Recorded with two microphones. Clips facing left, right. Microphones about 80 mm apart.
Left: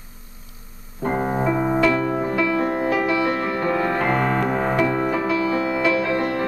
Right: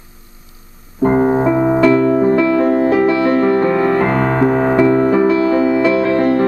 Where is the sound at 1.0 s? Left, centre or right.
Right.